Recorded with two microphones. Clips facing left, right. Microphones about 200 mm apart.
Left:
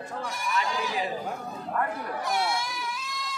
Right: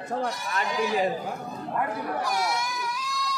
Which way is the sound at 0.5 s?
50° right (ahead or behind).